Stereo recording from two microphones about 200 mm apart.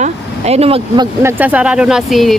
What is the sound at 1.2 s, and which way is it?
Speech, 10° right (ahead or behind).